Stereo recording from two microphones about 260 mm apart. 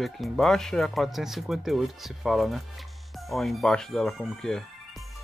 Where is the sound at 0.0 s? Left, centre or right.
Centre.